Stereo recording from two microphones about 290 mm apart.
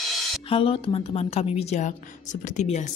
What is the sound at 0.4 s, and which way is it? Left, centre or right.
A woman's voice, centre.